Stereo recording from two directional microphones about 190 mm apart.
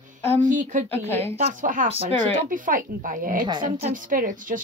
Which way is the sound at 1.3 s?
40° right (ahead or behind).